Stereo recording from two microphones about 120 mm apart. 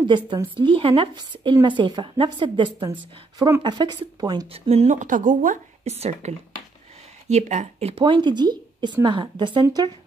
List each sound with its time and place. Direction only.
0.0 s speech: 40° right (ahead or behind)
3.3 s a woman's voice: 25° right (ahead or behind)
3.6 s speech: 40° right (ahead or behind)
4.5 s a woman's voice: 55° right (ahead or behind); by 7.9 s 75° right (ahead or behind)
7.9 s speech: 40° right (ahead or behind)